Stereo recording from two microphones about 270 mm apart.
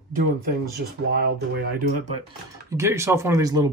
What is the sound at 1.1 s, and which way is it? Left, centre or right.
Speech, right.